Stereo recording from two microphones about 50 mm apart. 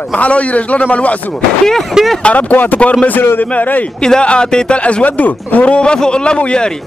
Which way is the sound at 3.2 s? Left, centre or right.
Left.